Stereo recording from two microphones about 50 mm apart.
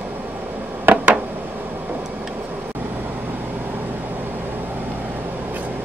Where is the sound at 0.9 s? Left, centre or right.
Right.